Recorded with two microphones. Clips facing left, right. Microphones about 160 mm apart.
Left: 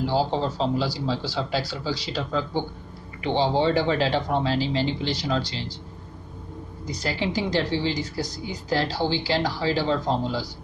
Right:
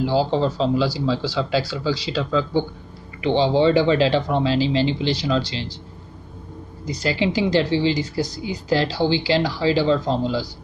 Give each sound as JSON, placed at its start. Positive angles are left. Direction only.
{"t": 0.0, "sound": "speech", "side_deg": -90}
{"t": 6.9, "sound": "speech", "side_deg": -90}